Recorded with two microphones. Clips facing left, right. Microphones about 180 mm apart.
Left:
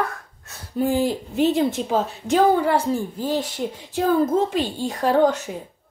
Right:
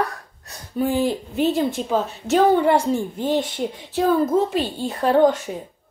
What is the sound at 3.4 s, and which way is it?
Speech, 10° left (ahead or behind).